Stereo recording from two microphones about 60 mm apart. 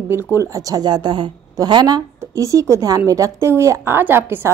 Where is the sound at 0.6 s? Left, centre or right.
Right.